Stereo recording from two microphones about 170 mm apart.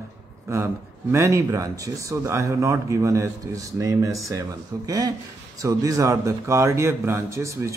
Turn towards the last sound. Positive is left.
turn(degrees=-15)  # may be behind; listen again after turning